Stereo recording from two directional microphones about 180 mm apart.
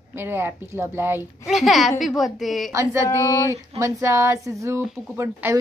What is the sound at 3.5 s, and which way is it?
Speech, 15° right (ahead or behind).